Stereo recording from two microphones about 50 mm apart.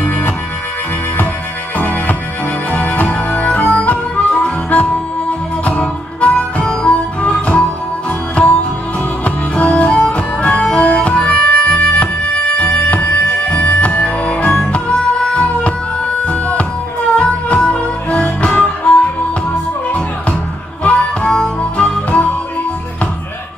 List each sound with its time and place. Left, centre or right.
1.8 s music: left; by 6.9 s centre
6.9 s music: left
9.2 s music: left
13.5 s music: left
20.8 s harmonica: left
21.7 s music: left